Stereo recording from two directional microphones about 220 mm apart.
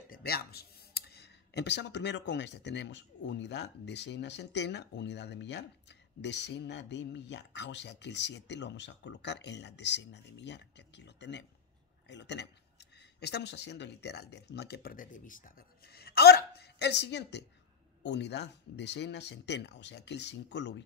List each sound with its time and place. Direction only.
0.1 s speech: 45° left (ahead or behind)